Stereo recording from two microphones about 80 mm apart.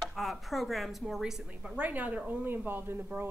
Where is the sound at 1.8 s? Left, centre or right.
Right.